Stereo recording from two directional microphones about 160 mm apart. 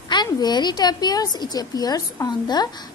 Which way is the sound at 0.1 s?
25° left (ahead or behind).